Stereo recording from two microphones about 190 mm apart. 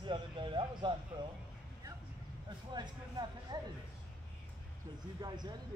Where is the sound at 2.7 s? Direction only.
20° right (ahead or behind).